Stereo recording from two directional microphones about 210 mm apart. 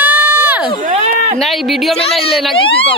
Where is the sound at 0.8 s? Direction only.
35° right (ahead or behind).